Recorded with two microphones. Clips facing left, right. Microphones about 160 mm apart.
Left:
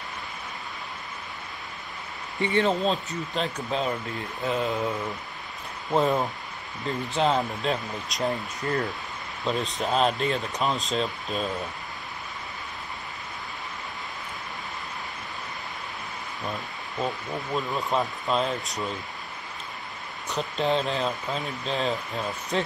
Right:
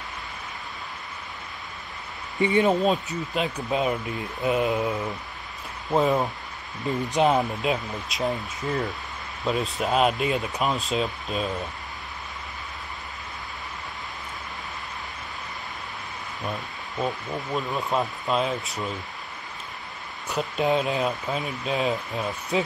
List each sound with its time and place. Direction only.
2.3 s speech: 15° right (ahead or behind)
5.9 s speech: 5° right (ahead or behind)
6.9 s speech: 15° right (ahead or behind)
17.0 s speech: centre (ahead or behind)
20.6 s speech: 10° right (ahead or behind)